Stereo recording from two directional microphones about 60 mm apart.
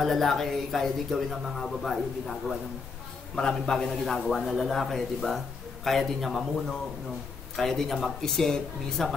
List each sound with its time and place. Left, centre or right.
0.0 s a man's voice: centre